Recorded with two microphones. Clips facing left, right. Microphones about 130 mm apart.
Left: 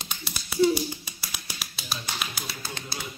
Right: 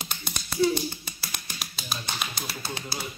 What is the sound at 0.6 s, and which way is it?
Tap, 15° left (ahead or behind).